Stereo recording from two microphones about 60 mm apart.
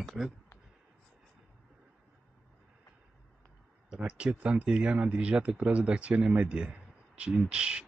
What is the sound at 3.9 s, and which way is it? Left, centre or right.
Speech, centre.